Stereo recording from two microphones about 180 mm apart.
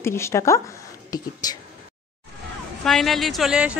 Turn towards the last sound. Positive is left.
turn(degrees=-5)  # may be behind; listen again after turning